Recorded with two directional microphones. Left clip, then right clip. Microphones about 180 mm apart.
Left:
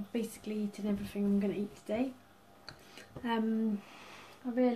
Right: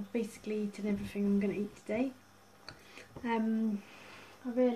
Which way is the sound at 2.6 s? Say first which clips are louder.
Even; 5° left (ahead or behind).